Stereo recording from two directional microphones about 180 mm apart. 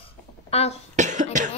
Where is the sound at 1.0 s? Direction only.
45° right (ahead or behind).